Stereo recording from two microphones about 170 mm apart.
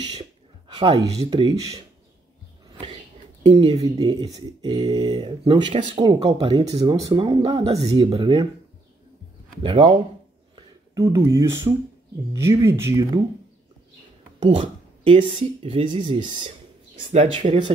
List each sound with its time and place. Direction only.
0.1 s speech: 30° right (ahead or behind)
3.5 s speech: 30° right (ahead or behind)
5.7 s speech: 40° right (ahead or behind)
6.4 s speech: 30° right (ahead or behind)
9.6 s speech: 30° right (ahead or behind)
11.0 s speech: 15° right (ahead or behind)
14.4 s a sound: 30° right (ahead or behind)
15.2 s speech: 35° right (ahead or behind)